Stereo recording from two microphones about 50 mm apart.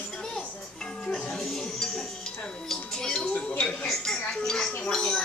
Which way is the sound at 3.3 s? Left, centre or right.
Left.